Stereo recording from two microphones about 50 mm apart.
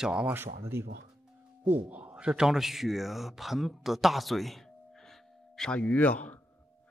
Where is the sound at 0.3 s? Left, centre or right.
Right.